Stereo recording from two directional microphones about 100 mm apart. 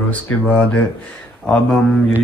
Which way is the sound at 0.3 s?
15° left (ahead or behind).